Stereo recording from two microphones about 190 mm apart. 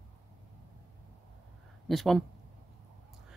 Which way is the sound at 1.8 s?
Centre (ahead or behind).